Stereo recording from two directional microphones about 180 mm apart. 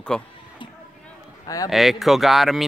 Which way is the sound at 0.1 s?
5° left (ahead or behind).